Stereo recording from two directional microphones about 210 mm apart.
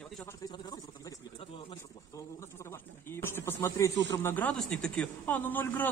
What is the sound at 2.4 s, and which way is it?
Snake, 15° left (ahead or behind).